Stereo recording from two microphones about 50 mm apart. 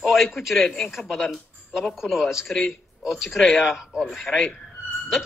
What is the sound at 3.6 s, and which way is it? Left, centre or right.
Speech, centre.